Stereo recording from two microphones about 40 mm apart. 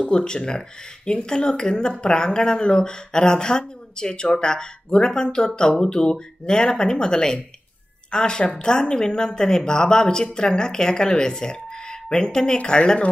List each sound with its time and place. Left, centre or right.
0.0 s speech: left